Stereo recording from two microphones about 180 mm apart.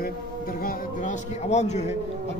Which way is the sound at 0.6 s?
55° left (ahead or behind).